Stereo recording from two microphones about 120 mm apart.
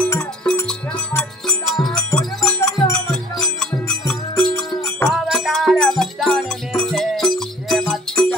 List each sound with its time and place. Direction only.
0.0 s cowbell: 15° left (ahead or behind)
0.7 s music: 5° left (ahead or behind)
5.0 s music: centre (ahead or behind)